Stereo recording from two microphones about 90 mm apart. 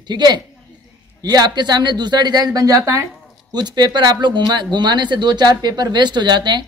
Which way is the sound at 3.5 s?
50° right (ahead or behind).